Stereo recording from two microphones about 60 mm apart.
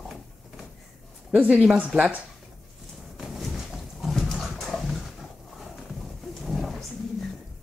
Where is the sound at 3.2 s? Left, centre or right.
Centre.